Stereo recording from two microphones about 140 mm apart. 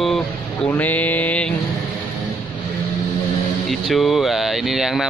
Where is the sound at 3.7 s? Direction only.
Centre (ahead or behind).